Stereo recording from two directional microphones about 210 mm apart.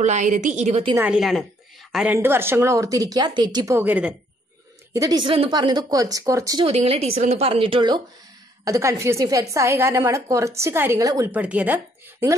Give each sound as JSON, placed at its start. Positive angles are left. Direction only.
{"t": 0.0, "sound": "a woman's voice", "side_deg": -35}
{"t": 0.9, "sound": "a woman's voice", "side_deg": -5}
{"t": 6.6, "sound": "a woman's voice", "side_deg": -25}